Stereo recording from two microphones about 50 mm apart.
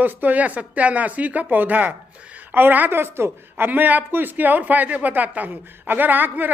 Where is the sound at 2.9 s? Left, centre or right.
Right.